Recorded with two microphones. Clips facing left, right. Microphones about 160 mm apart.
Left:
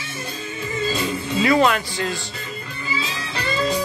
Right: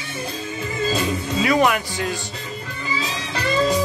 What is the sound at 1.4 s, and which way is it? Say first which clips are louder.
Speech: left 1 dB; 15° right (ahead or behind).